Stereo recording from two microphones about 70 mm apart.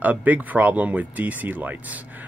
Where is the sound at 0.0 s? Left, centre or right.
Right.